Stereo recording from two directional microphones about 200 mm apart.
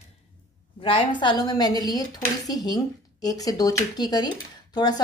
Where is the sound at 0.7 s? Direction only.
25° left (ahead or behind).